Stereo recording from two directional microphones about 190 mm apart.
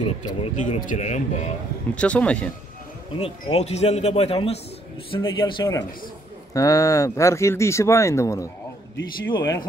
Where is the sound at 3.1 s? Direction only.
30° left (ahead or behind).